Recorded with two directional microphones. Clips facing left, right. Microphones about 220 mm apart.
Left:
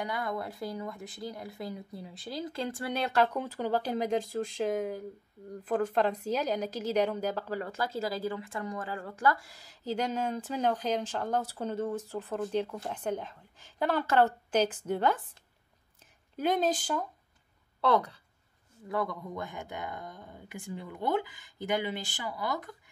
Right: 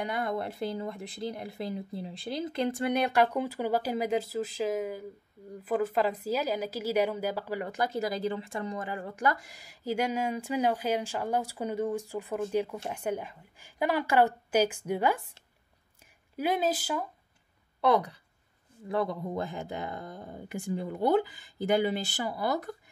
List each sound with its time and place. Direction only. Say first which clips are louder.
0.0 s a woman's voice: right 3 dB; 25° right (ahead or behind)
16.3 s a woman's voice: even; 10° right (ahead or behind)
18.9 s speech: right 3 dB; 25° right (ahead or behind)